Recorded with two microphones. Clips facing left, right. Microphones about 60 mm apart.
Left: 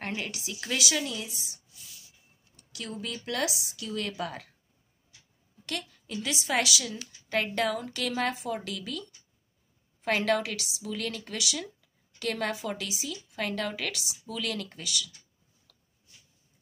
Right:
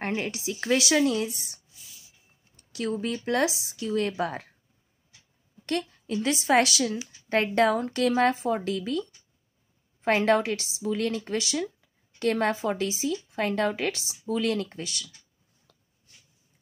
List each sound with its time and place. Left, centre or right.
0.0 s speech: right
1.8 s a sound: centre
2.5 s speech: right
5.7 s speech: right